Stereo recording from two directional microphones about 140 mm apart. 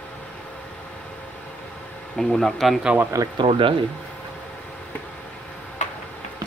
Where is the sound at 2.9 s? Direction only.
25° right (ahead or behind).